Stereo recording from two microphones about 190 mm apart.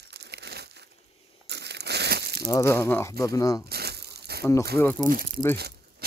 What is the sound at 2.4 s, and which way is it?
Speech, 15° left (ahead or behind).